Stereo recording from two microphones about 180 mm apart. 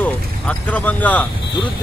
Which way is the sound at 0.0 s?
10° left (ahead or behind).